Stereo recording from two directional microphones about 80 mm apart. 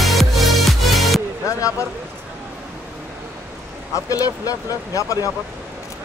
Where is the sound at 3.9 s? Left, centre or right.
Left.